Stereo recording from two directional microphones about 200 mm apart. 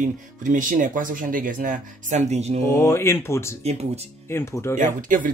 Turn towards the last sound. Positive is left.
turn(degrees=-40)  # may be behind; listen again after turning